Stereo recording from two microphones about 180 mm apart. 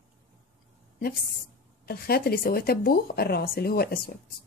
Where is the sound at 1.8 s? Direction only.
60° left (ahead or behind).